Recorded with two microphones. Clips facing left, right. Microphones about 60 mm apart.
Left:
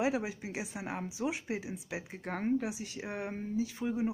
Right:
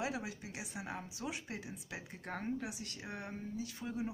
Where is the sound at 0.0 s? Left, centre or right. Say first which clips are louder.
Left 8 dB; left.